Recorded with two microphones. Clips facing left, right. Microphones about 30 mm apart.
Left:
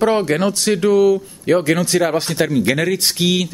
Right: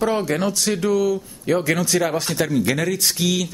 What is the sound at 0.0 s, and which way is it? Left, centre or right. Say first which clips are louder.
Speech: left 5 dB; left.